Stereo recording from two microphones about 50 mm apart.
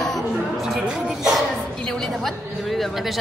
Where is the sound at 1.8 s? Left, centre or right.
Centre.